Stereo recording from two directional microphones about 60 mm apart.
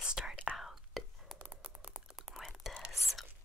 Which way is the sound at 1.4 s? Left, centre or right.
Right.